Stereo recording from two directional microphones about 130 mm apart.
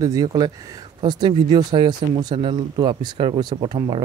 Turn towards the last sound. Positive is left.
turn(degrees=-45)  # may be behind; listen again after turning